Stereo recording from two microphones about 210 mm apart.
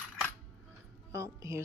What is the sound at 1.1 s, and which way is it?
Speech, 15° right (ahead or behind).